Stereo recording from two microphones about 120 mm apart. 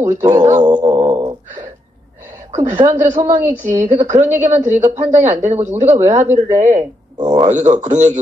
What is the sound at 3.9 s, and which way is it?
A man's voice, 70° right (ahead or behind).